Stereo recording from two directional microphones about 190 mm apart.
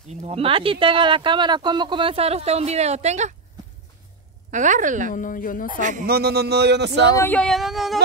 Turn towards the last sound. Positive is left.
turn(degrees=0)  # may be behind; listen again after turning